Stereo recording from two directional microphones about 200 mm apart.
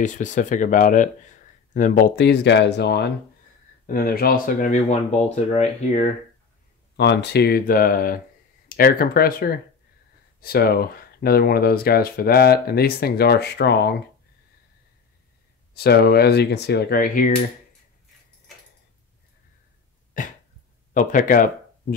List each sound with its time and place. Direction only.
0.0 s speech: 40° left (ahead or behind); by 3.1 s 60° left (ahead or behind)
3.8 s speech: 45° left (ahead or behind)
7.0 s speech: 60° left (ahead or behind)
15.7 s speech: 55° left (ahead or behind)
20.9 s speech: 40° left (ahead or behind)